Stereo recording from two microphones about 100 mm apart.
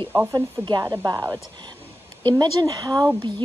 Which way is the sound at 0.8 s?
35° right (ahead or behind).